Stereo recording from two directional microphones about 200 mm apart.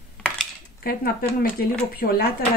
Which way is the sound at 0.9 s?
50° left (ahead or behind).